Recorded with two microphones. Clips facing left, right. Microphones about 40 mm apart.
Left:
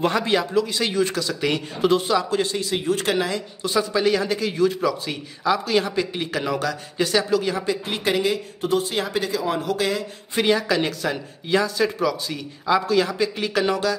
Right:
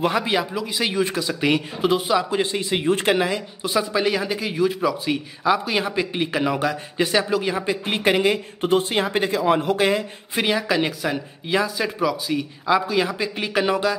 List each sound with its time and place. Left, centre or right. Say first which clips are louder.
0.0 s a man's voice: even; centre; by 10.0 s right
10.3 s a man's voice: left 1 dB; centre